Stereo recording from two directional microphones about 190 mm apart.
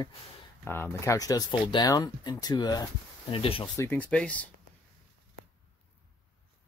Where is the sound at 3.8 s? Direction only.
10° left (ahead or behind).